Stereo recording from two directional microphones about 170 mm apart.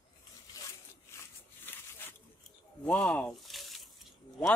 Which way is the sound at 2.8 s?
5° left (ahead or behind).